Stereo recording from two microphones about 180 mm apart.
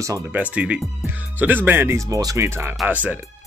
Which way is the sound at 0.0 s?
15° right (ahead or behind).